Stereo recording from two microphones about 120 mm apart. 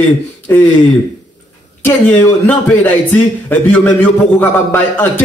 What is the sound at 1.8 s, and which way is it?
A man's voice, 15° left (ahead or behind).